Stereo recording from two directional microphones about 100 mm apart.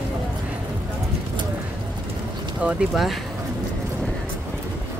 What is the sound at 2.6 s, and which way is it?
Speech, 15° right (ahead or behind).